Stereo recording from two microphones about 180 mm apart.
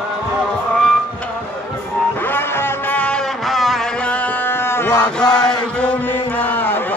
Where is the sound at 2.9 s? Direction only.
5° left (ahead or behind).